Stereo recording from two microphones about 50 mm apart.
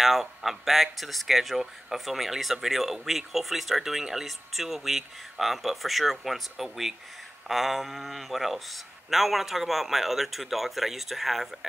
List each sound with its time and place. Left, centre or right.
0.0 s speech: centre